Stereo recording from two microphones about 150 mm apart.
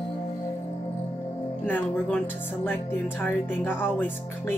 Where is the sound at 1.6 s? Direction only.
10° left (ahead or behind).